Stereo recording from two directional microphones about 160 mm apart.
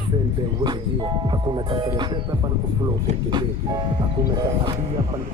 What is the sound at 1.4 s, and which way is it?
Music, 30° right (ahead or behind).